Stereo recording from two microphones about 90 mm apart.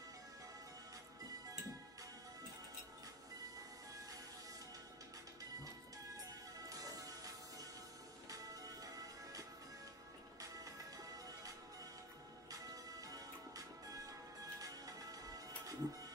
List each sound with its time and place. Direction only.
6.7 s music: 40° right (ahead or behind)